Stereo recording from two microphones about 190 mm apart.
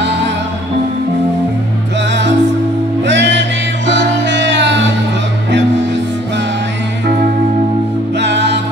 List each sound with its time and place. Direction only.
3.1 s music: 70° right (ahead or behind)
8.2 s music: 65° right (ahead or behind)